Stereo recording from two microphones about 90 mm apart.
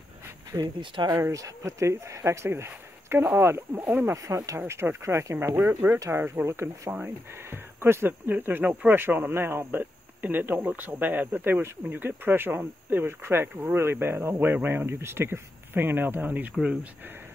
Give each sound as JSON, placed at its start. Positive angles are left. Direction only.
{"t": 0.7, "sound": "speech", "side_deg": -60}
{"t": 1.3, "sound": "speech", "side_deg": -35}
{"t": 4.0, "sound": "speech", "side_deg": -35}
{"t": 4.6, "sound": "speech", "side_deg": -25}